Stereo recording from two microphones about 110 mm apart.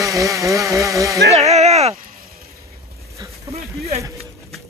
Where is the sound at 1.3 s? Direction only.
80° right.